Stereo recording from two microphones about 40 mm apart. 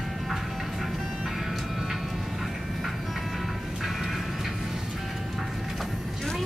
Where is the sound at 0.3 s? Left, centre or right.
Centre.